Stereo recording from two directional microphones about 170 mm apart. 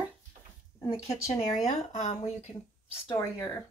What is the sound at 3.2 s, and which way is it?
Speech, 15° left (ahead or behind).